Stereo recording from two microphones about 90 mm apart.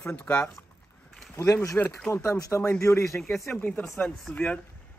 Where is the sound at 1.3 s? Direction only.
30° left (ahead or behind).